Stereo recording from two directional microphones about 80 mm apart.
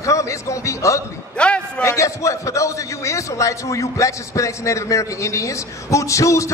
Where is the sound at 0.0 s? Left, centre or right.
Left.